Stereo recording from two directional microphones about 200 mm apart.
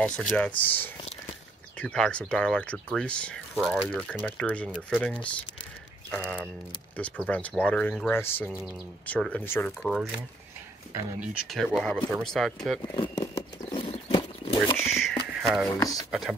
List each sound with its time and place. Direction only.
0.0 s speech: 5° left (ahead or behind)
7.0 s speech: 5° left (ahead or behind)
10.9 s speech: 5° right (ahead or behind)
12.8 s a sound: 20° left (ahead or behind)
13.8 s a sound: 30° left (ahead or behind)
14.9 s a sound: centre (ahead or behind)
15.4 s speech: centre (ahead or behind)
15.8 s speech: 20° left (ahead or behind)
16.1 s speech: centre (ahead or behind)